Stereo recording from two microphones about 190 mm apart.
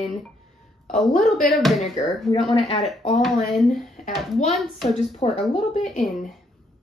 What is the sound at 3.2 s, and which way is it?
Speech, centre (ahead or behind).